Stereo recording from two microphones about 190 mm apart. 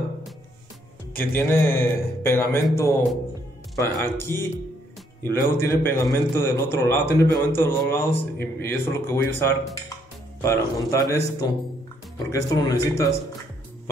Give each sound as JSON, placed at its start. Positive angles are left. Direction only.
{"t": 1.1, "sound": "a man's voice", "side_deg": 10}
{"t": 3.7, "sound": "a man's voice", "side_deg": 15}